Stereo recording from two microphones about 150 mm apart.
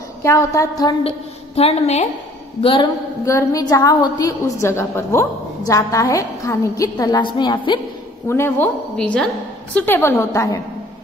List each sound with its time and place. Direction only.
0.2 s a woman's voice: 20° left (ahead or behind)
1.0 s a woman's voice: 40° left (ahead or behind)
3.3 s a woman's voice: 20° left (ahead or behind)
8.3 s a woman's voice: 15° left (ahead or behind)